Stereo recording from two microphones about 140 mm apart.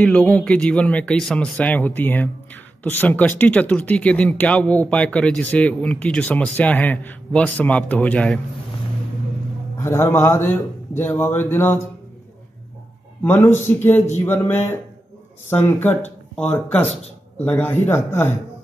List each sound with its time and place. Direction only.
0.0 s speech: 5° left (ahead or behind)
9.8 s speech: 20° left (ahead or behind)
13.2 s speech: 15° left (ahead or behind)
16.8 s a man's voice: 50° left (ahead or behind)
17.5 s speech: 15° left (ahead or behind)